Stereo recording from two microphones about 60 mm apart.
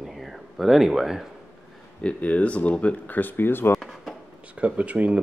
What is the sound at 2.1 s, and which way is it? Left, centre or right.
Speech, left.